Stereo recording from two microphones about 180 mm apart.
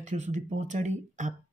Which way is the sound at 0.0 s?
40° right (ahead or behind).